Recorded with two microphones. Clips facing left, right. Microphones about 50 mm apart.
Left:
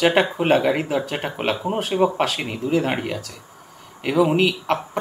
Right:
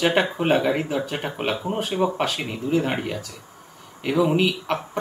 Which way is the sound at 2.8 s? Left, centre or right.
Centre.